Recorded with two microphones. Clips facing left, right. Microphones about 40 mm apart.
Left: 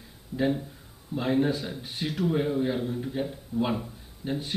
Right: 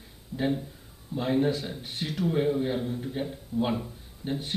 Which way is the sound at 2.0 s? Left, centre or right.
Left.